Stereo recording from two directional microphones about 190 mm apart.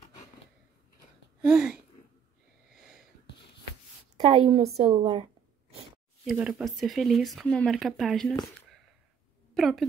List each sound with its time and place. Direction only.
1.4 s speech: 5° right (ahead or behind)
4.3 s a woman's voice: 30° right (ahead or behind)
6.2 s speech: 5° right (ahead or behind)
9.5 s a sound: centre (ahead or behind)